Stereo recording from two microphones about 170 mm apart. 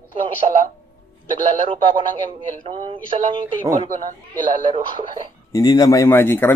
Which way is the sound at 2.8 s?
30° right (ahead or behind).